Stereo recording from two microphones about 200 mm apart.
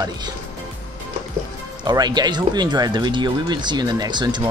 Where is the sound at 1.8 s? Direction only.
20° right (ahead or behind).